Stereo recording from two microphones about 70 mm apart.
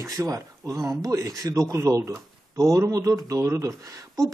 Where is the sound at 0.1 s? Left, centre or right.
Right.